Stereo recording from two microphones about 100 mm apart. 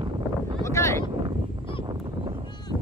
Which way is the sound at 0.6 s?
30° left (ahead or behind).